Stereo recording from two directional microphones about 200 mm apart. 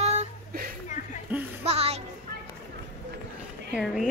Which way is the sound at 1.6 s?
30° right (ahead or behind).